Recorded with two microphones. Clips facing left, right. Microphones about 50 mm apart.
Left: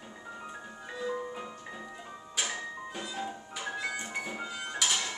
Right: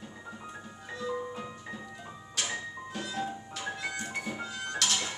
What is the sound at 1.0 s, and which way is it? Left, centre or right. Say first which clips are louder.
Music: even; centre.